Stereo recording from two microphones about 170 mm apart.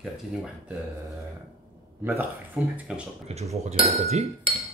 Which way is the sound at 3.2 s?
40° right (ahead or behind).